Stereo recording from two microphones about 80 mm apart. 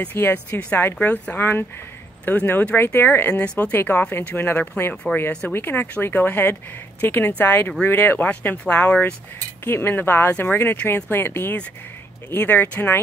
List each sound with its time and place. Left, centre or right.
0.0 s speech: left
3.4 s speech: centre